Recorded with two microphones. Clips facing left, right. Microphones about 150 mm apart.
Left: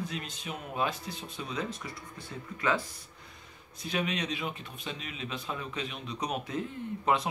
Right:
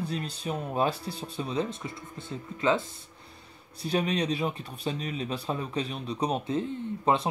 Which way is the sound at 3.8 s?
35° right (ahead or behind).